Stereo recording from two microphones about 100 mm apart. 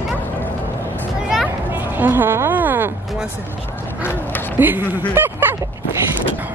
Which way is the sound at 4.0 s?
20° left (ahead or behind).